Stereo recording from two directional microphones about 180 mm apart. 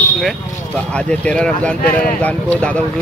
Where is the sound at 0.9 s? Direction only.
5° left (ahead or behind).